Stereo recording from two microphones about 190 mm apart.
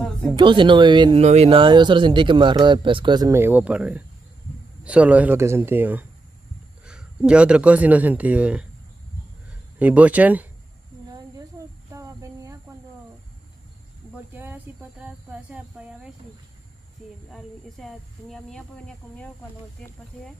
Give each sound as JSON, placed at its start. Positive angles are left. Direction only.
{"t": 0.4, "sound": "speech", "side_deg": -25}
{"t": 9.8, "sound": "speech", "side_deg": -10}
{"t": 11.6, "sound": "cricket", "side_deg": -25}
{"t": 11.9, "sound": "a sound", "side_deg": -15}
{"t": 14.3, "sound": "a sound", "side_deg": -10}
{"t": 17.3, "sound": "snake", "side_deg": 0}